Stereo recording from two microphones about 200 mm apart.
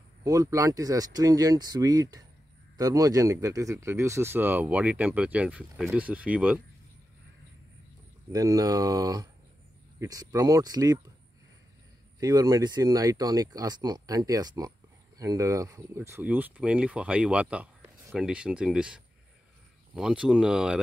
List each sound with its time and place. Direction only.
0.2 s speech: 15° right (ahead or behind)
8.3 s speech: 15° right (ahead or behind)
12.2 s speech: 20° right (ahead or behind)